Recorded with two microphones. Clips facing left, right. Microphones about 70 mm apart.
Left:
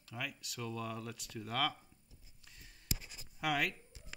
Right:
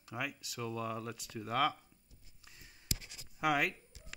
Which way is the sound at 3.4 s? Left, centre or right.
Centre.